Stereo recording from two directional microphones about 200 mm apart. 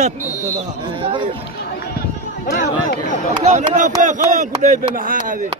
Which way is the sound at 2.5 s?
50° left (ahead or behind).